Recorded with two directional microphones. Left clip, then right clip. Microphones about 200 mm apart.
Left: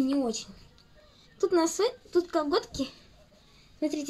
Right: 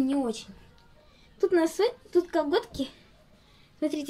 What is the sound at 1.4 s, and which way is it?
A woman's voice, centre (ahead or behind).